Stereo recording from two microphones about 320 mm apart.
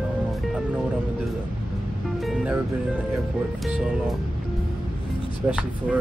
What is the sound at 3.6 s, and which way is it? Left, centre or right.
Speech, centre.